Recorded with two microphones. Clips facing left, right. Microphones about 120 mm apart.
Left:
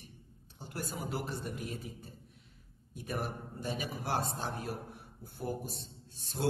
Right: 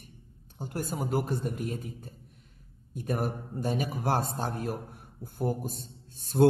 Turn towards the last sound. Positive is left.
turn(degrees=-50)  # may be behind; listen again after turning